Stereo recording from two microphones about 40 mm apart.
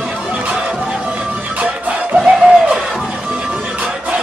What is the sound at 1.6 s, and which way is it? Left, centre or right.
Music, right.